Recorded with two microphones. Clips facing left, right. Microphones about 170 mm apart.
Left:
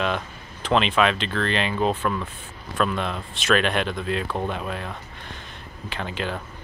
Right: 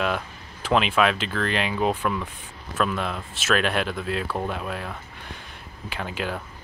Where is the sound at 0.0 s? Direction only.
5° right (ahead or behind).